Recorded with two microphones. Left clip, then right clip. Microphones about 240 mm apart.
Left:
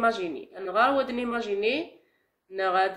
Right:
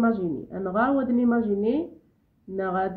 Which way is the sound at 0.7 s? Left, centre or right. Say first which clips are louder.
Left 1 dB; centre.